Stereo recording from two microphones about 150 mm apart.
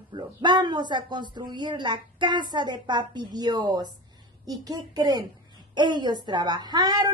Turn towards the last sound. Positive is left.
turn(degrees=-25)  # may be behind; listen again after turning